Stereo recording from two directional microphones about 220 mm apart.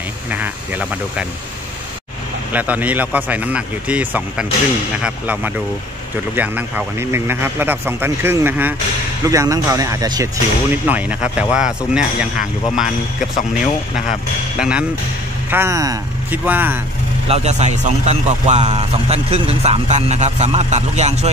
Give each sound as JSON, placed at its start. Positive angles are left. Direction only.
{"t": 0.3, "sound": "speech", "side_deg": -5}
{"t": 2.5, "sound": "speech", "side_deg": -5}
{"t": 14.6, "sound": "speech", "side_deg": -5}
{"t": 17.3, "sound": "speech", "side_deg": -30}